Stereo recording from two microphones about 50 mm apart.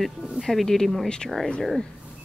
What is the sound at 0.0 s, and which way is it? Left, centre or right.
Speech, centre.